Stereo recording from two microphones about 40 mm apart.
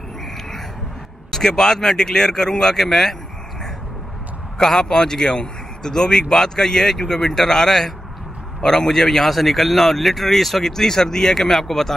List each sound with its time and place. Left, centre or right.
1.3 s a man's voice: centre
4.6 s a man's voice: centre